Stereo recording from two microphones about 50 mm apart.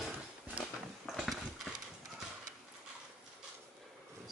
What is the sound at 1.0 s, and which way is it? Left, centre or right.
Clip-clop, centre.